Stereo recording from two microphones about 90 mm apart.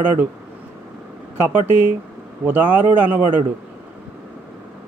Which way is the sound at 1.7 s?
25° right (ahead or behind).